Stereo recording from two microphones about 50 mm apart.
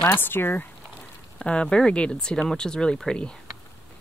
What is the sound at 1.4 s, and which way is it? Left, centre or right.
Speech, centre.